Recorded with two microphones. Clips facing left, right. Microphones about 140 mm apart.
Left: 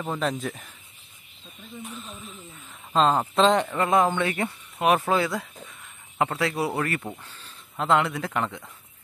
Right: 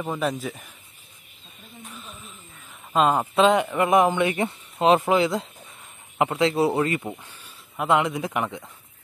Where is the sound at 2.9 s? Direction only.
10° right (ahead or behind).